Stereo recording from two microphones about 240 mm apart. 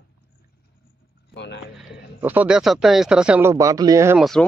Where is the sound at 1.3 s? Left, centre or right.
Left.